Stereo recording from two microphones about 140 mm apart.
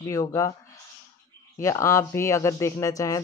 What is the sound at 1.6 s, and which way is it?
Speech, 20° left (ahead or behind).